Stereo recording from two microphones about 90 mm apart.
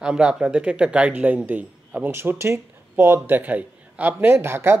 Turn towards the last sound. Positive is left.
turn(degrees=-30)  # may be behind; listen again after turning